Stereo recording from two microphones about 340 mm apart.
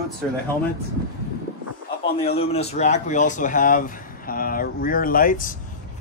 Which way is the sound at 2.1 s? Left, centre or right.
Centre.